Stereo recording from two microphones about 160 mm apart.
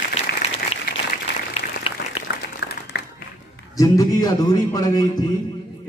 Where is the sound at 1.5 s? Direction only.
40° left (ahead or behind).